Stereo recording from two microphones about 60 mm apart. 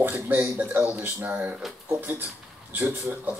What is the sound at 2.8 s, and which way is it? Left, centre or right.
Speech, right.